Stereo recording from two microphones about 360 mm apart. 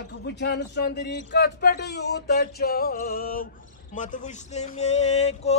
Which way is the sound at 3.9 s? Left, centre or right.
Left.